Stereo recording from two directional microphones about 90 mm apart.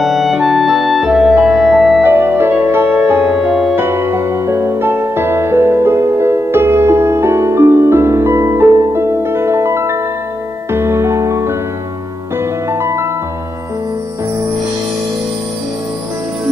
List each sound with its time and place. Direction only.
0.0 s music: centre (ahead or behind)
2.0 s music: 25° right (ahead or behind)